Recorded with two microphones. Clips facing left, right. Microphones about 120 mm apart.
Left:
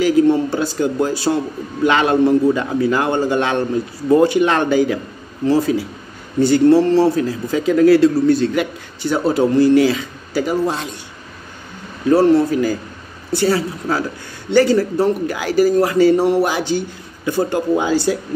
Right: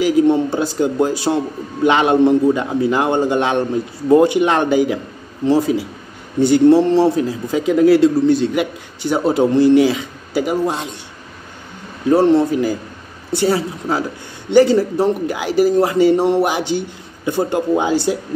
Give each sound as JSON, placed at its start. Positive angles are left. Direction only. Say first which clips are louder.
{"t": 0.0, "sound": "a man's voice", "louder": "even", "side_deg": -15}
{"t": 12.1, "sound": "a man's voice", "louder": "even", "side_deg": -20}